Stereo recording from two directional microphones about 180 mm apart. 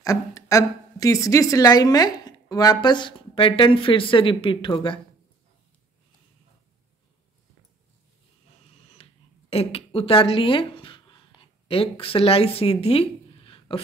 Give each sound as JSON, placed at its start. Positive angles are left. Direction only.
{"t": 0.0, "sound": "a woman's voice", "side_deg": 20}
{"t": 9.0, "sound": "a sound", "side_deg": 35}
{"t": 9.5, "sound": "speech", "side_deg": 30}